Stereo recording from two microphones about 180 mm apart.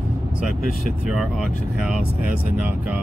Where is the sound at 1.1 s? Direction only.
5° right (ahead or behind).